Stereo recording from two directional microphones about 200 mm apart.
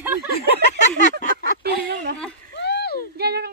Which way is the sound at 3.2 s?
55° right (ahead or behind).